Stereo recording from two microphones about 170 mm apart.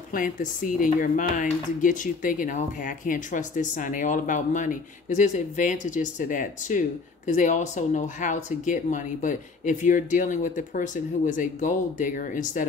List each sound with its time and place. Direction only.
0.1 s speech: 50° left (ahead or behind)